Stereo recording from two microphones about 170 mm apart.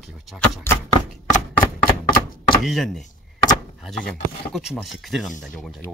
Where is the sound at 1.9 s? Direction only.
60° left (ahead or behind).